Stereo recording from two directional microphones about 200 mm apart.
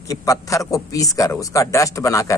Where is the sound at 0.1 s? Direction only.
15° left (ahead or behind).